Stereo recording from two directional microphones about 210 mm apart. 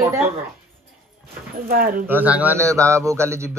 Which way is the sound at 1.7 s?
45° right (ahead or behind).